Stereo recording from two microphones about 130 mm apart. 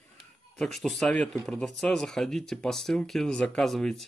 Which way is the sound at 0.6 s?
Centre (ahead or behind).